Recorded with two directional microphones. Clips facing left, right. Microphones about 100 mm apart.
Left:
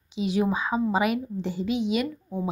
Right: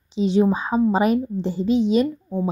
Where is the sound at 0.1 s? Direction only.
30° right (ahead or behind).